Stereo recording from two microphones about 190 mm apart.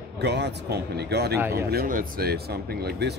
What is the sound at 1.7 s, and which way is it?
Speech, 50° right (ahead or behind).